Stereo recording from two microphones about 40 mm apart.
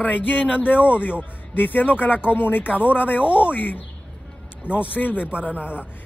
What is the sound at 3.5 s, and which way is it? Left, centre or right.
Speech, left.